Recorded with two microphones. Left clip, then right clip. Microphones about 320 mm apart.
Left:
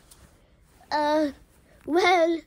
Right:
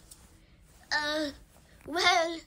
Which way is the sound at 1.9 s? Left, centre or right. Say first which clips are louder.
Left 6 dB; centre.